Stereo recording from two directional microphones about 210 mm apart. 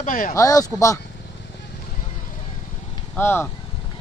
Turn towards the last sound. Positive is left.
turn(degrees=10)  # may be behind; listen again after turning